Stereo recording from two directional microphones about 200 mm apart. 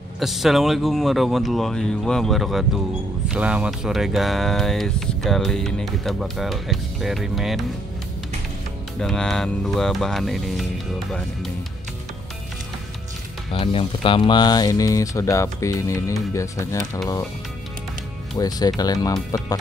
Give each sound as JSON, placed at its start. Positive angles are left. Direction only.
{"t": 0.2, "sound": "speech", "side_deg": 0}
{"t": 9.0, "sound": "speech", "side_deg": 5}
{"t": 13.5, "sound": "speech", "side_deg": 25}
{"t": 18.4, "sound": "speech", "side_deg": 20}